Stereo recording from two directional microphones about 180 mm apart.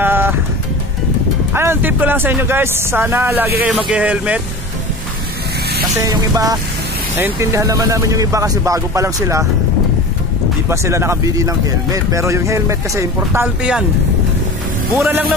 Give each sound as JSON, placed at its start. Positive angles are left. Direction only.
{"t": 0.0, "sound": "music", "side_deg": -10}
{"t": 1.5, "sound": "speech", "side_deg": -10}
{"t": 6.0, "sound": "music", "side_deg": -20}
{"t": 7.2, "sound": "speech", "side_deg": -15}
{"t": 10.7, "sound": "speech", "side_deg": -15}
{"t": 15.0, "sound": "a man's voice", "side_deg": -5}